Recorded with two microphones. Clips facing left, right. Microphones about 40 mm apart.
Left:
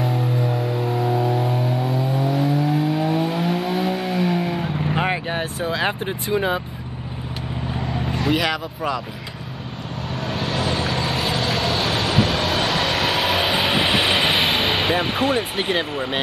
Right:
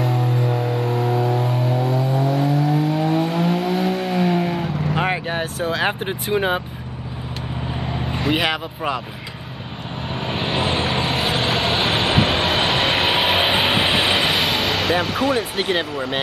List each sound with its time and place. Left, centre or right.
0.0 s vehicle: centre
6.0 s speech: right
8.1 s speech: right
10.2 s vehicle: right
11.1 s vehicle: centre
13.8 s vehicle: centre
14.4 s music: left
15.7 s speech: centre